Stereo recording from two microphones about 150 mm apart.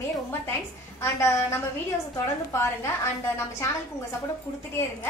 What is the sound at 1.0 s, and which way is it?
A woman's voice, 20° left (ahead or behind).